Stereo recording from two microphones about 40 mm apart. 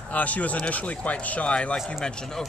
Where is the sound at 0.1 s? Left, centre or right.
Left.